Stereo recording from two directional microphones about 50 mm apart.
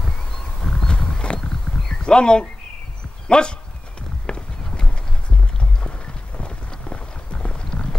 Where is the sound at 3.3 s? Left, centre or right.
Centre.